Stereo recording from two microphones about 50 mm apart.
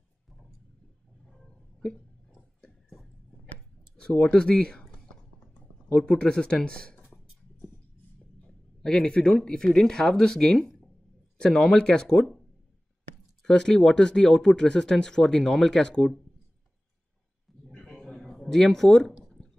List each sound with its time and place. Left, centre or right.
4.2 s speech: centre
5.9 s speech: centre
8.5 s speech: centre
13.4 s speech: centre
17.6 s a sound: centre
18.4 s speech: centre